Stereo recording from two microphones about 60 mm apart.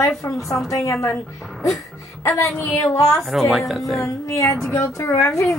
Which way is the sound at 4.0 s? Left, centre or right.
Left.